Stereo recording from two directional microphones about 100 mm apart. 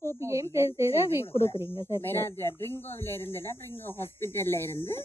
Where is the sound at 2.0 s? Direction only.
25° left (ahead or behind).